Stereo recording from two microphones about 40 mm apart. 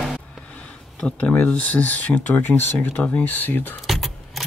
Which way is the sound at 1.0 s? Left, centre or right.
Left.